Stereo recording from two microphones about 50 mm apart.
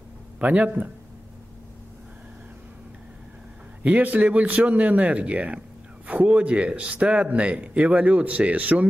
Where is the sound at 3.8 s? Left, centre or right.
Right.